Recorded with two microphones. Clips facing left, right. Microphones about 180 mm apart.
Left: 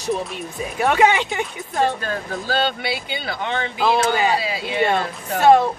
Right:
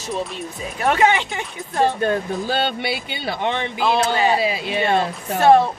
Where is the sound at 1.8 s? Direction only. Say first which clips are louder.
Right 3 dB; 20° right (ahead or behind).